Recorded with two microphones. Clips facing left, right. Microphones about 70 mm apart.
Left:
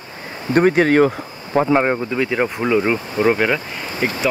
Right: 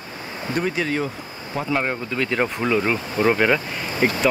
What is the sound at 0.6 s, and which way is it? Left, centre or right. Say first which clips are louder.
Speech: left 11 dB; left.